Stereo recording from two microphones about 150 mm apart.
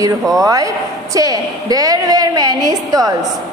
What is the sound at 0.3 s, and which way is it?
A man's voice, 25° right (ahead or behind).